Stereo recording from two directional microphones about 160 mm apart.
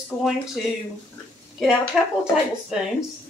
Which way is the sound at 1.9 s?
5° right (ahead or behind).